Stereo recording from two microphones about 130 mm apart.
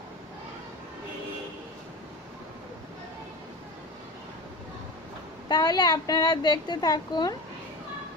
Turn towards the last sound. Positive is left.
turn(degrees=30)  # may be behind; listen again after turning